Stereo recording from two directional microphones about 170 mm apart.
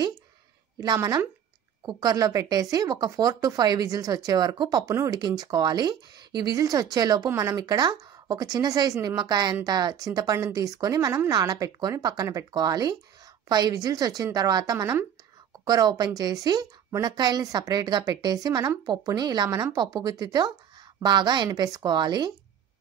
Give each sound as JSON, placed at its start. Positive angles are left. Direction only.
{"t": 0.7, "sound": "speech", "side_deg": -20}